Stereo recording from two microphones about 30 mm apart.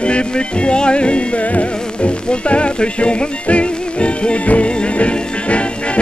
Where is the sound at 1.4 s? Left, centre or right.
Left.